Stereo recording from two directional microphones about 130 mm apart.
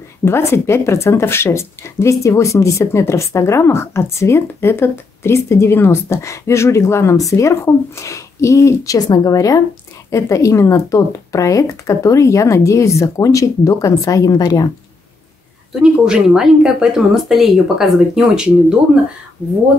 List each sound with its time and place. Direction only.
0.2 s speech: 20° left (ahead or behind)
15.8 s speech: 5° right (ahead or behind)